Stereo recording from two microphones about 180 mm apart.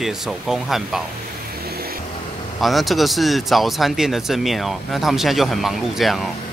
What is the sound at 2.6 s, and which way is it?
Speech, centre (ahead or behind).